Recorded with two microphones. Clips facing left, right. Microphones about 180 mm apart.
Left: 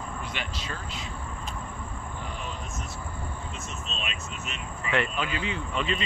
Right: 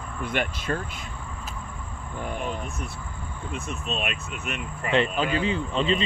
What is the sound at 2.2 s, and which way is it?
Speech, 55° right (ahead or behind).